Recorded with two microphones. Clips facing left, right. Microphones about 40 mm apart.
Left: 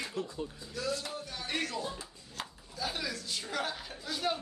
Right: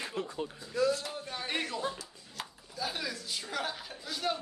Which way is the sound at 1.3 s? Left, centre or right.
Right.